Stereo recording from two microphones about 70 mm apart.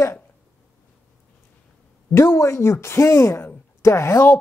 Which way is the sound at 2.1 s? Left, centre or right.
Left.